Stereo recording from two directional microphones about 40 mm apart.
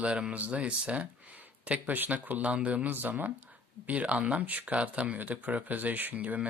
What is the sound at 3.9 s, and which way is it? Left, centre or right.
Speech, right.